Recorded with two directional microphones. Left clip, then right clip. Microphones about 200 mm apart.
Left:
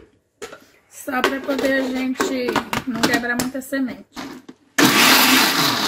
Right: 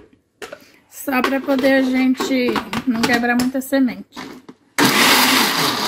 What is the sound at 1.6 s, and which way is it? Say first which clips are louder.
A woman's voice: right 5 dB; 50° right (ahead or behind).